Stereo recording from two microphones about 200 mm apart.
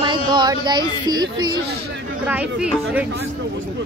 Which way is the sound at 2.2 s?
5° right (ahead or behind).